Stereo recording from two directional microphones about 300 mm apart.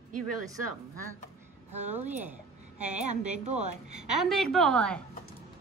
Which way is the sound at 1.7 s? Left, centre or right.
Right.